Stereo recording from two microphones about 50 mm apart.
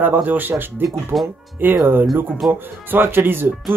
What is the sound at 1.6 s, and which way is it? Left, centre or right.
Speech, right.